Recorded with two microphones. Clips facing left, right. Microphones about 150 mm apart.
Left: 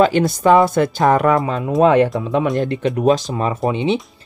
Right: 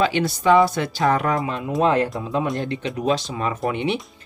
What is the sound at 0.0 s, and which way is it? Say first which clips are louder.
Speech: left 6 dB; 45° left (ahead or behind).